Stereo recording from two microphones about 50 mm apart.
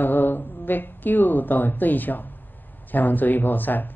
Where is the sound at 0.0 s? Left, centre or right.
Left.